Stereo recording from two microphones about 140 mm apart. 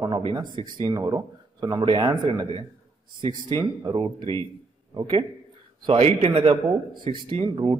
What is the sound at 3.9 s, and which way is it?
A man's voice, 35° right (ahead or behind).